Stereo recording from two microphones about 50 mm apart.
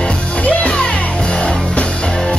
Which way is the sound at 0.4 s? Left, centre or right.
Left.